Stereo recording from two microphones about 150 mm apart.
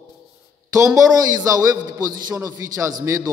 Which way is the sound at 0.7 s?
20° right (ahead or behind).